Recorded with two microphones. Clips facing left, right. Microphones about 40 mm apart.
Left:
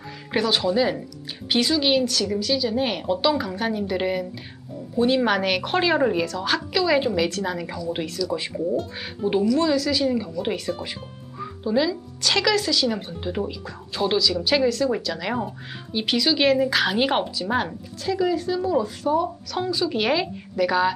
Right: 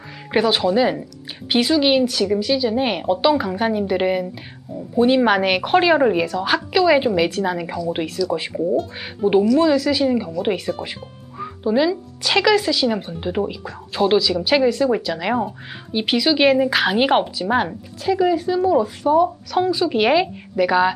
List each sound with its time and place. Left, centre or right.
0.3 s speech: centre